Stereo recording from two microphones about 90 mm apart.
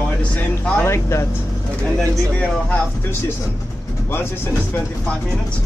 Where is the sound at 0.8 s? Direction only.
30° left (ahead or behind).